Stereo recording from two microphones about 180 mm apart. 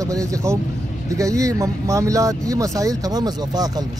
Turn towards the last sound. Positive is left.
turn(degrees=-20)  # may be behind; listen again after turning